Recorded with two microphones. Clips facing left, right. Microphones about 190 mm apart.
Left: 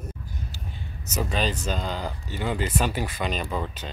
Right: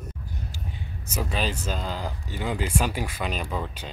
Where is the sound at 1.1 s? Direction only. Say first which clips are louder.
Left 2 dB; 5° right (ahead or behind).